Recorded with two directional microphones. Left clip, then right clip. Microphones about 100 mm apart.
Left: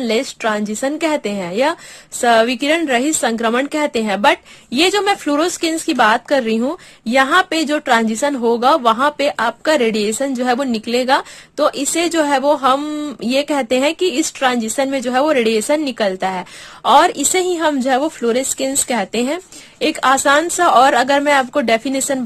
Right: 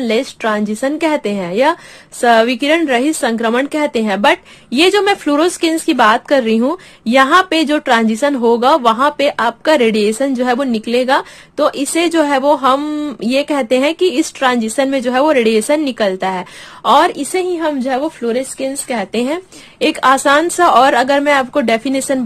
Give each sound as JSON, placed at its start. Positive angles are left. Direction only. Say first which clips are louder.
{"t": 0.0, "sound": "a woman's voice", "louder": "right 2 dB", "side_deg": 35}
{"t": 17.2, "sound": "a woman's voice", "louder": "left 1 dB", "side_deg": 60}
{"t": 19.2, "sound": "a woman's voice", "louder": "right 2 dB", "side_deg": 35}
{"t": 19.9, "sound": "speech", "louder": "right 2 dB", "side_deg": 25}